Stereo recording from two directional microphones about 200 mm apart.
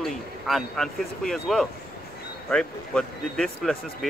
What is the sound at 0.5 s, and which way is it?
Speech, centre (ahead or behind).